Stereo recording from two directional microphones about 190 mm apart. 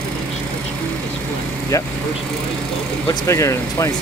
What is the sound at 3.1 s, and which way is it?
Speech, 15° left (ahead or behind).